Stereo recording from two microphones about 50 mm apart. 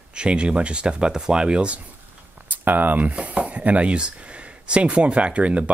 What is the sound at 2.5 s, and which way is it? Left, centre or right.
Speech, right.